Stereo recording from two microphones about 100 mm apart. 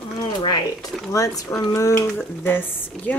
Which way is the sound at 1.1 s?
35° left (ahead or behind).